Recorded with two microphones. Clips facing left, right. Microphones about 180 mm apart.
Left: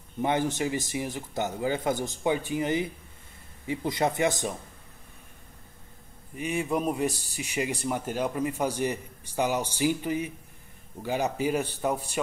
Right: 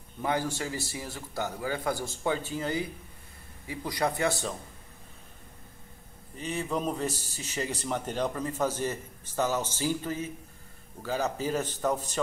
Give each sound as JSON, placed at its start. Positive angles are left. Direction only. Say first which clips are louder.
{"t": 0.2, "sound": "a man's voice", "louder": "left 4 dB", "side_deg": 20}
{"t": 6.3, "sound": "speech", "louder": "left 3 dB", "side_deg": 15}